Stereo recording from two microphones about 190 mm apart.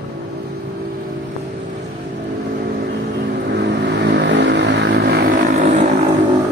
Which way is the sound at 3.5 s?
65° right (ahead or behind).